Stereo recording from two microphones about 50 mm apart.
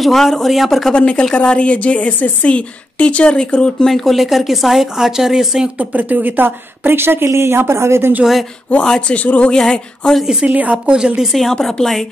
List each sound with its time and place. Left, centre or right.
0.0 s speech: centre
0.9 s a woman's voice: centre
3.9 s speech: centre
5.8 s a woman's voice: right
7.2 s speech: right
8.8 s a sound: centre
9.1 s a woman's voice: left
9.5 s a sound: centre
10.4 s speech: right
11.5 s a sound: centre